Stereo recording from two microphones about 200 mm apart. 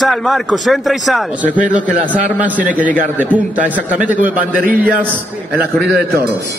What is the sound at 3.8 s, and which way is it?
Speech, 5° right (ahead or behind).